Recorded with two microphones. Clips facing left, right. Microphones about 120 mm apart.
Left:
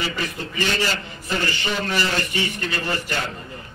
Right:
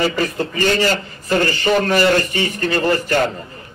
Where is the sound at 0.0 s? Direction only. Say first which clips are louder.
Right 9 dB; 45° right (ahead or behind).